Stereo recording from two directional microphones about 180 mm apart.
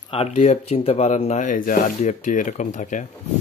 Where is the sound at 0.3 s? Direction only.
40° left (ahead or behind).